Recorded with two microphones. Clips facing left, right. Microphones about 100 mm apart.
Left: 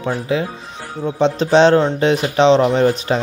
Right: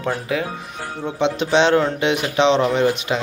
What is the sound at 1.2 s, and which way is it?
Speech, 40° left (ahead or behind).